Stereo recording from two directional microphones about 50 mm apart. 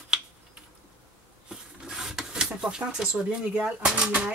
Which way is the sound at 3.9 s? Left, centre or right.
Right.